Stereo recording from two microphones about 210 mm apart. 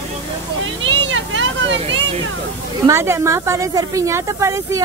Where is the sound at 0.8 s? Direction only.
60° right (ahead or behind).